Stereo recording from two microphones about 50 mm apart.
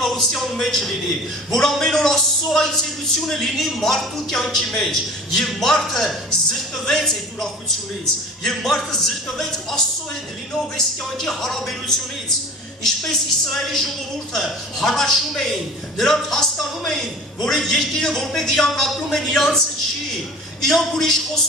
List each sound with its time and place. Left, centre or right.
0.0 s a man's voice: centre
20.6 s a man's voice: centre